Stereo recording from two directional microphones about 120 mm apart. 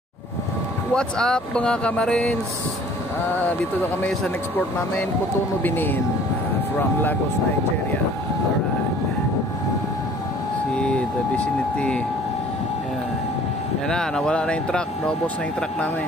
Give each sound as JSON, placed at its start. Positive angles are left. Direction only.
{"t": 0.9, "sound": "speech", "side_deg": 5}
{"t": 4.6, "sound": "speech", "side_deg": 15}
{"t": 10.8, "sound": "speech", "side_deg": 10}
{"t": 13.8, "sound": "speech", "side_deg": 5}